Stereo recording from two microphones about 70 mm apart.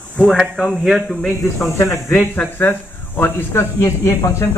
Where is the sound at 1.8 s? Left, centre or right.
Left.